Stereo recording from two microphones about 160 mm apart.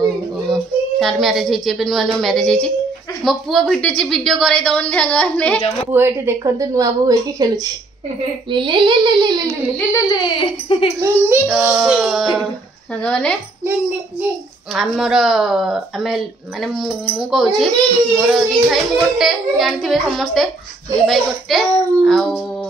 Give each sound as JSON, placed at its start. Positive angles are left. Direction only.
{"t": 0.5, "sound": "a woman's voice", "side_deg": 0}
{"t": 5.9, "sound": "a woman's voice", "side_deg": -15}
{"t": 9.8, "sound": "speech", "side_deg": 20}
{"t": 11.2, "sound": "a child's voice", "side_deg": -5}
{"t": 14.7, "sound": "a child's voice", "side_deg": 0}